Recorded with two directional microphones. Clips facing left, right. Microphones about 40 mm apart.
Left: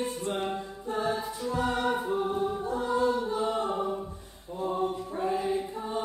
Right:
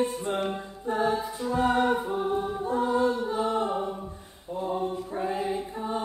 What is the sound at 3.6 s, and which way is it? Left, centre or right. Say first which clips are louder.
A capella: right 2 dB; centre.